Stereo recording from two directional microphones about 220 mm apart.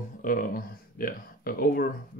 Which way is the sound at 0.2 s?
40° left (ahead or behind).